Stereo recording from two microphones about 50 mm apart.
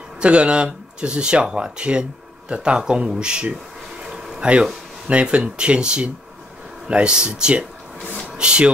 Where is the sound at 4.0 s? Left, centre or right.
Centre.